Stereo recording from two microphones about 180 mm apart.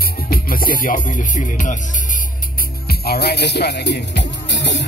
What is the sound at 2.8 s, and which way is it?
Speech, 60° left (ahead or behind).